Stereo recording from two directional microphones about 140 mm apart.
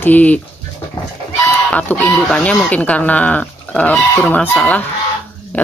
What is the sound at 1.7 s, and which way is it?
Speech, 10° left (ahead or behind).